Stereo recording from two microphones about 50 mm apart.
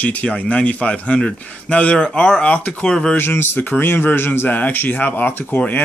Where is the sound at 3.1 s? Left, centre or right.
Left.